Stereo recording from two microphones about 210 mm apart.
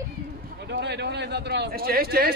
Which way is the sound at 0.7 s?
50° right (ahead or behind).